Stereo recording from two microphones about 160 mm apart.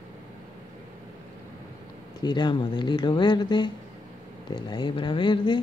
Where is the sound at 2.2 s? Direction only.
30° left (ahead or behind).